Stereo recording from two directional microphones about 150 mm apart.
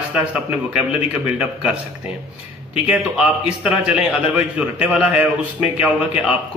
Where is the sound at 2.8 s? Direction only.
5° right (ahead or behind).